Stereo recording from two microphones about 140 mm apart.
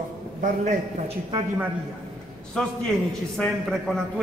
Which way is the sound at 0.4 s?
60° right (ahead or behind).